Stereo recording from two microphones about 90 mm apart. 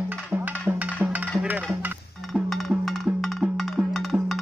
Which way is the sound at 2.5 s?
Centre (ahead or behind).